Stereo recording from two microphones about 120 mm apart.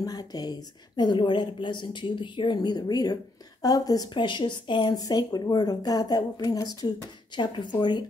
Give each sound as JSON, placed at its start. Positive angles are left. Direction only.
{"t": 0.0, "sound": "a woman's voice", "side_deg": 30}